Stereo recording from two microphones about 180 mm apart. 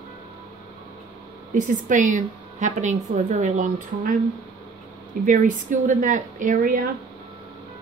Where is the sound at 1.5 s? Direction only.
45° right (ahead or behind).